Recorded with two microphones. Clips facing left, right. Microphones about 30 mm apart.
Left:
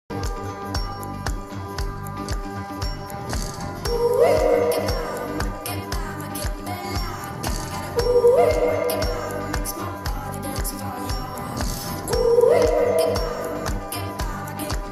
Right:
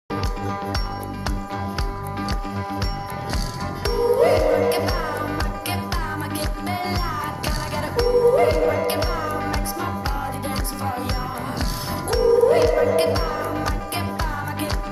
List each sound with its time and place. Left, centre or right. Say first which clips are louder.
2.1 s music: right 3 dB; right
3.8 s music: even; right